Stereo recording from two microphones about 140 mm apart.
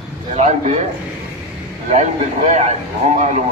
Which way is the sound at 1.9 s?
60° right (ahead or behind).